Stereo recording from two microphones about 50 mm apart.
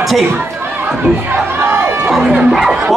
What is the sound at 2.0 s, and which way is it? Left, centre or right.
Speech, centre.